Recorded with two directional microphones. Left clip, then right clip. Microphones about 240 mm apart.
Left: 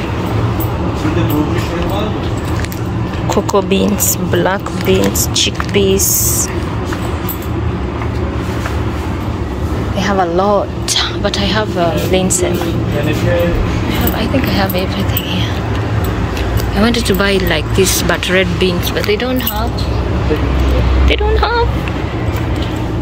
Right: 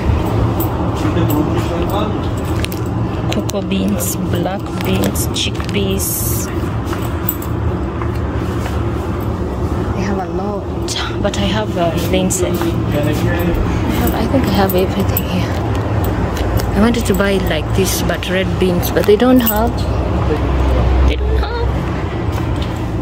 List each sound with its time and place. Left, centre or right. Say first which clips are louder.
3.5 s speech: left 6 dB; centre
11.0 s speech: left 4 dB; centre
14.4 s speech: right 1 dB; right
16.8 s speech: left 2 dB; centre
18.9 s speech: right 8 dB; right
21.1 s speech: left 8 dB; centre